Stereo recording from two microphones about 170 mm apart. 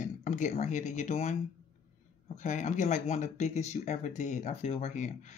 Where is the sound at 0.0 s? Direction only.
45° left (ahead or behind).